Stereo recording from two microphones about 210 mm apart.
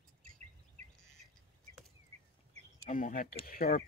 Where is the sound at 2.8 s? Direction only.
40° left (ahead or behind).